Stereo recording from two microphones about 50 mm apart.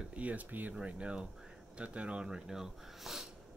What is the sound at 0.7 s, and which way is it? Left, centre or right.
Speech, right.